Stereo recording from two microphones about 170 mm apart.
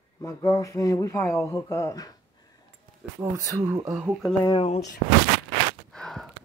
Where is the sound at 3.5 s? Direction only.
20° right (ahead or behind).